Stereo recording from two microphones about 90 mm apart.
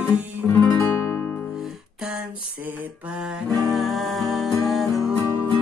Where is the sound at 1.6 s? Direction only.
5° right (ahead or behind).